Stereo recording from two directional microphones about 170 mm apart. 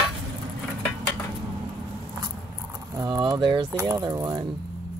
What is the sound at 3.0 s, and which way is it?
Speech, 20° right (ahead or behind).